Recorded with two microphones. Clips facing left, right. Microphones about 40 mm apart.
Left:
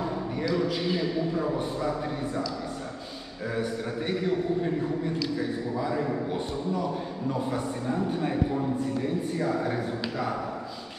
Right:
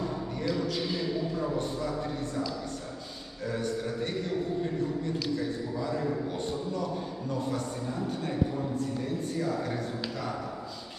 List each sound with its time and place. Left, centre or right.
0.0 s a man's voice: left
3.5 s a man's voice: centre